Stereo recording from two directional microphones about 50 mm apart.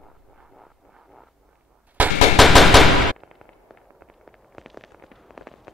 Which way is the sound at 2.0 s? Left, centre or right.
Right.